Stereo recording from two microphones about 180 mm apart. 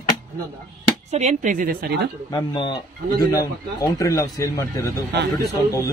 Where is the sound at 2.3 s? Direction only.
25° left (ahead or behind).